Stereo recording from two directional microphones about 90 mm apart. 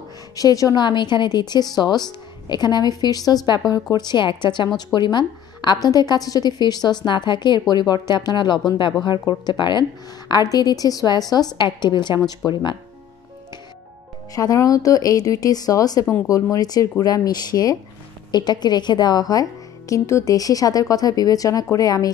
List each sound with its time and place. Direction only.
0.4 s speech: 40° left (ahead or behind)
0.7 s a woman's voice: 55° left (ahead or behind)
14.3 s a woman's voice: 40° left (ahead or behind)
19.9 s a woman's voice: 35° left (ahead or behind)